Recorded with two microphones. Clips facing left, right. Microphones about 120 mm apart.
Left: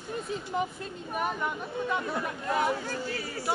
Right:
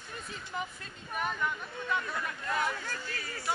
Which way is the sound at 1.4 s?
20° left (ahead or behind).